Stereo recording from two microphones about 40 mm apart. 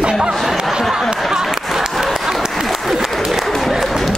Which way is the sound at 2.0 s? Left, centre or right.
Centre.